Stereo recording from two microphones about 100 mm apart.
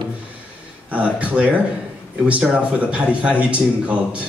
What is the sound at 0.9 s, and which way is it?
Speech, 15° right (ahead or behind).